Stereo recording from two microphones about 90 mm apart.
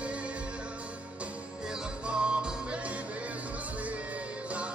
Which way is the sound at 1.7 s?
10° right (ahead or behind).